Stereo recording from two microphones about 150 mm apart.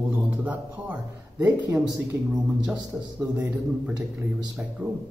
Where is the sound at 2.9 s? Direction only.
20° right (ahead or behind).